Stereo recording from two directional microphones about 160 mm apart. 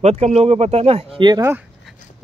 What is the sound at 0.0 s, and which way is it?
Speech, 45° right (ahead or behind).